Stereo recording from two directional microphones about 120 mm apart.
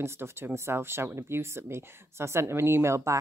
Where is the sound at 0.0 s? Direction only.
20° right (ahead or behind).